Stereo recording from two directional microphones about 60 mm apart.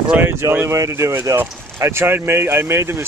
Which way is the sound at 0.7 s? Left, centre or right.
Right.